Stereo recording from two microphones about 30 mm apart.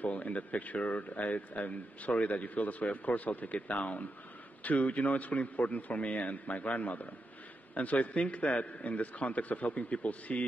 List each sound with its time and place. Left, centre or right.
0.0 s speech: left
3.6 s speech: left